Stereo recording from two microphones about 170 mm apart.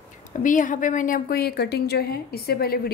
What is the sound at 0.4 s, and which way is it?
A woman's voice, 50° left (ahead or behind).